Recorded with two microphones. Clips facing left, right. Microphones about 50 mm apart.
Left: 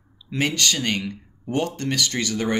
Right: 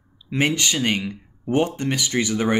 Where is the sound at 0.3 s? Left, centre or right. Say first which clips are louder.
Right 2 dB; centre.